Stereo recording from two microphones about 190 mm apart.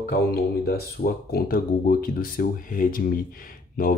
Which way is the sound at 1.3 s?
50° left (ahead or behind).